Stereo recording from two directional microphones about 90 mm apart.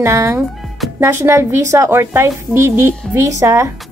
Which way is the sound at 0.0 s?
35° right (ahead or behind).